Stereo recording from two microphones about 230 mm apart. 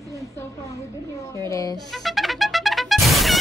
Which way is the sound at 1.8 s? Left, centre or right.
Centre.